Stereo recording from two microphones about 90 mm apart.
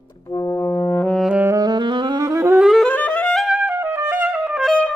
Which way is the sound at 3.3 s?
Centre (ahead or behind).